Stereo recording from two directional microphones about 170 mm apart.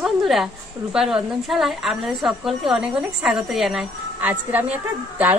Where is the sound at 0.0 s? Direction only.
Centre (ahead or behind).